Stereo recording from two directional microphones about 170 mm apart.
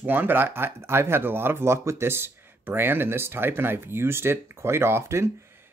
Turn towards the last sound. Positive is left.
turn(degrees=-15)  # may be behind; listen again after turning